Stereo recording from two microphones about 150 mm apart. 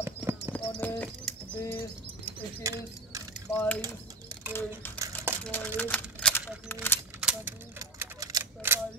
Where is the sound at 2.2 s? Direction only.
20° right (ahead or behind).